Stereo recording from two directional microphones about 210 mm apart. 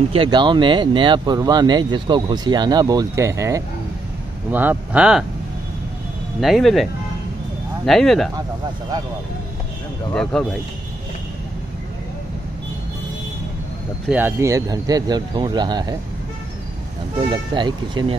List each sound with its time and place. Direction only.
0.1 s speech: 25° right (ahead or behind); by 5.2 s 5° right (ahead or behind)
6.4 s speech: centre (ahead or behind)
10.3 s speech: 5° left (ahead or behind)
14.0 s speech: 10° right (ahead or behind)
17.3 s speech: 20° right (ahead or behind)